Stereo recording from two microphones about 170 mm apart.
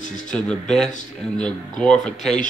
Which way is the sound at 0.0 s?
45° left (ahead or behind).